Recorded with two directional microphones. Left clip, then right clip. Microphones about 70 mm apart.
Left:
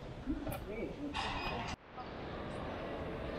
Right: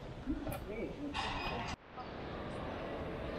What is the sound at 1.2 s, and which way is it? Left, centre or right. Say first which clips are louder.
Speech: even; centre.